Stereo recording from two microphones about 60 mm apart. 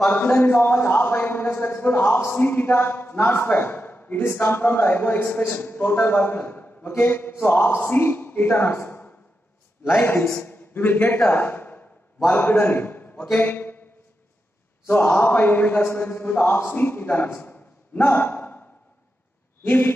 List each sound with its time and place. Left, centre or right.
0.1 s a man's voice: left
11.3 s a sound: left
12.3 s a man's voice: left
14.9 s a man's voice: left
17.9 s a sound: left
19.6 s speech: left